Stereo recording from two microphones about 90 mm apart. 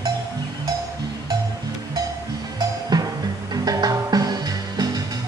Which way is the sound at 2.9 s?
50° right (ahead or behind).